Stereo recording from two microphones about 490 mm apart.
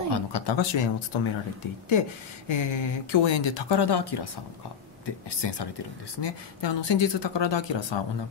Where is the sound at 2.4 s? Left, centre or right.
Left.